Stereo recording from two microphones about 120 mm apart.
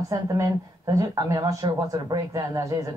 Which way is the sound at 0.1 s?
30° right (ahead or behind).